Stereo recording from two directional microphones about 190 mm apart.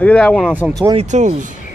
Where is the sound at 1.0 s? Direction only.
35° right (ahead or behind).